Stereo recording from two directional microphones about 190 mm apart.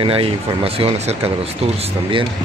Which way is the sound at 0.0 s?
30° right (ahead or behind).